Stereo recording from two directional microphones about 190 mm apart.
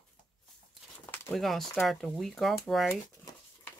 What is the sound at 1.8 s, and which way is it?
Speech, centre (ahead or behind).